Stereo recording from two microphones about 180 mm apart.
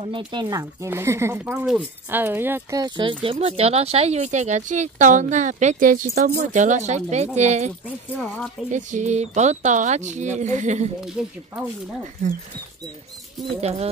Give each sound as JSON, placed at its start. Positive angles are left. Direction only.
{"t": 0.0, "sound": "speech", "side_deg": -25}
{"t": 8.7, "sound": "speech", "side_deg": -40}
{"t": 11.2, "sound": "speech", "side_deg": 0}
{"t": 13.6, "sound": "speech", "side_deg": -35}